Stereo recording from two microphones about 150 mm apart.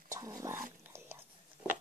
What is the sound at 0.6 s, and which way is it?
Whispering, 15° right (ahead or behind).